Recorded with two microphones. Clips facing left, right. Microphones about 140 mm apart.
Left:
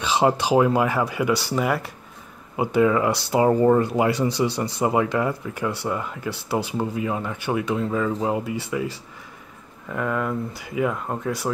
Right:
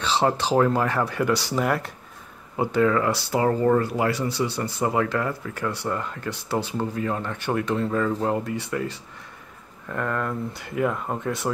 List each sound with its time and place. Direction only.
0.0 s speech: 10° left (ahead or behind)